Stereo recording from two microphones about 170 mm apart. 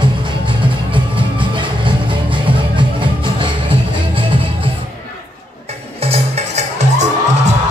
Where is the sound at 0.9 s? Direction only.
30° right (ahead or behind).